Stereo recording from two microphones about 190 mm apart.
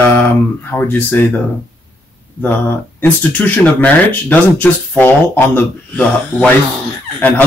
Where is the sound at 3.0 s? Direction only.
10° left (ahead or behind).